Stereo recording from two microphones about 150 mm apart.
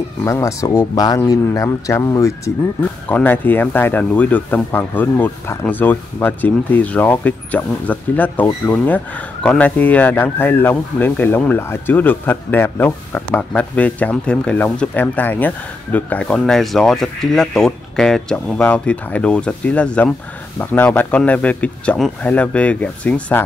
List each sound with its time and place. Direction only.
0.2 s speech: 20° left (ahead or behind)